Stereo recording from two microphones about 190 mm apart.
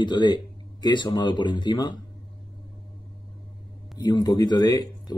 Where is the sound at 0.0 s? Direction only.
25° left (ahead or behind).